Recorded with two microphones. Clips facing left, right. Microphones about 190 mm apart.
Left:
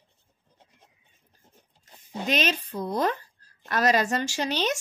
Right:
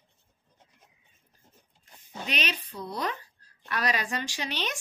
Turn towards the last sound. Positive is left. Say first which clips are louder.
# left 7 dB
turn(degrees=40)  # may be behind; listen again after turning